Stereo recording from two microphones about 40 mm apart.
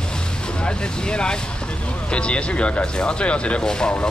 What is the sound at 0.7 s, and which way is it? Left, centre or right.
Speech, left.